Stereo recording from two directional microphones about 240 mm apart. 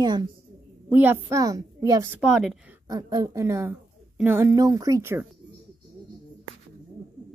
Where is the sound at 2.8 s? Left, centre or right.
Centre.